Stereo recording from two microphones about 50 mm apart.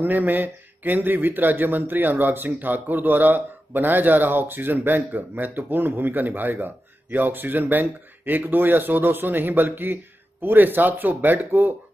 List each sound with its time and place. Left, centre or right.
0.0 s speech: right